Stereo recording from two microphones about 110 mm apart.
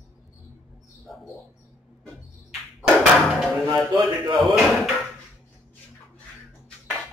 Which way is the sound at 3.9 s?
45° right (ahead or behind).